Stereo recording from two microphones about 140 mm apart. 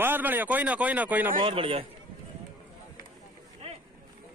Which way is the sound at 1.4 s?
40° right (ahead or behind).